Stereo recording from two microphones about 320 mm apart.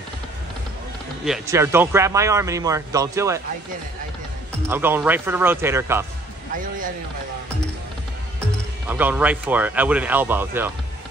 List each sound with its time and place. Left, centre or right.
1.2 s speech: centre
4.6 s speech: centre
6.5 s speech: right
8.8 s speech: centre